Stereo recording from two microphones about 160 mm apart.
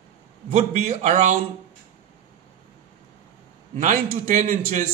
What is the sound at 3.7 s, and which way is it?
A man's voice, 50° right (ahead or behind).